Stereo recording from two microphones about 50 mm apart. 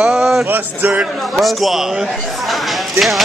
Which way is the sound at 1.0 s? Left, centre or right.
Centre.